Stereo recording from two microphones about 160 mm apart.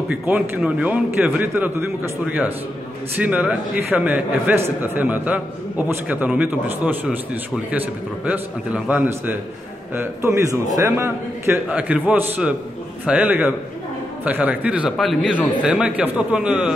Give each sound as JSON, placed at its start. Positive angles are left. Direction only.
{"t": 0.1, "sound": "a man's voice", "side_deg": -5}